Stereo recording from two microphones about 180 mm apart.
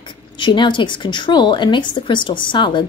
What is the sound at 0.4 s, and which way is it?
Speech, 25° left (ahead or behind).